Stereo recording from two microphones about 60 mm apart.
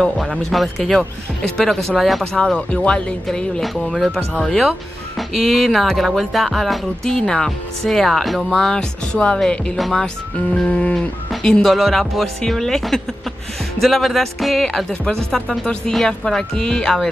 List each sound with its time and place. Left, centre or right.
0.4 s speech: centre
2.3 s speech: centre
4.1 s speech: centre
9.8 s speech: centre
10.7 s livestock: centre
11.4 s speech: centre